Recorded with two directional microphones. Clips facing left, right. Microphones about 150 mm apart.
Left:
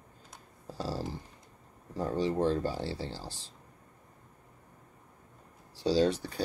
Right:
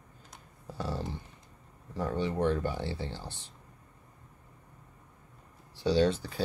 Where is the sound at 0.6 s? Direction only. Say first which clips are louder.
Even; 35° left (ahead or behind).